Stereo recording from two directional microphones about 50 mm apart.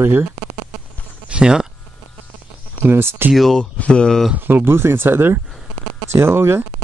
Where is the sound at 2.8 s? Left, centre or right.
Right.